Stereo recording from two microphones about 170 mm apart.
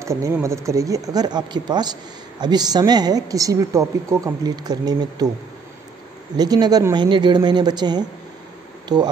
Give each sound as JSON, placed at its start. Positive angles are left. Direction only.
{"t": 0.0, "sound": "a woman's voice", "side_deg": -20}
{"t": 6.3, "sound": "a woman's voice", "side_deg": -25}